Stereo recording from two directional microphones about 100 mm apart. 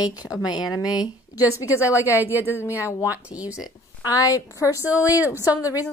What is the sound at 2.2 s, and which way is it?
Speech, 20° right (ahead or behind).